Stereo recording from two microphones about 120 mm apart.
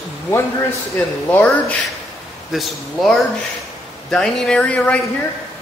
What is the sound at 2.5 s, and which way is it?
A man's voice, centre (ahead or behind).